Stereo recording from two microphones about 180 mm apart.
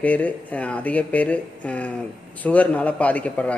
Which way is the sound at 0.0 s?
10° left (ahead or behind).